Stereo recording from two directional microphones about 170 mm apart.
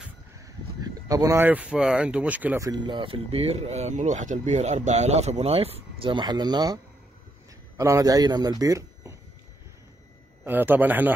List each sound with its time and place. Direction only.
0.7 s speech: 20° right (ahead or behind)
2.7 s speech: 25° right (ahead or behind)
10.4 s speech: 10° right (ahead or behind)